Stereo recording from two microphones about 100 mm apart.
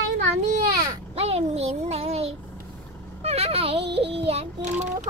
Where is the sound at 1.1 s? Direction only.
90° right.